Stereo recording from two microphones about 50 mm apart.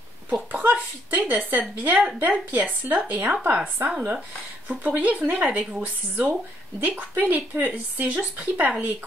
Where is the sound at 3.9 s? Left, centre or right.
Right.